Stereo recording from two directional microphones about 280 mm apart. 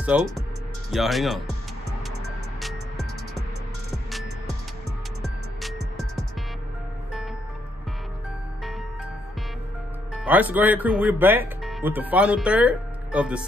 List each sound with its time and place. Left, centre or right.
0.1 s speech: centre
5.6 s music: centre
10.1 s speech: centre